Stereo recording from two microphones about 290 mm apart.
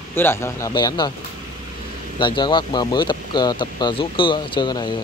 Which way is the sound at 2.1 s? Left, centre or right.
Centre.